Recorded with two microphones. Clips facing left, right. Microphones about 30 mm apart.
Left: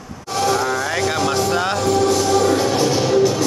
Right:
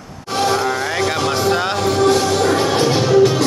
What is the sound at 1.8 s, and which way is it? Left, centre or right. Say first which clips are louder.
Music: right 3 dB; right.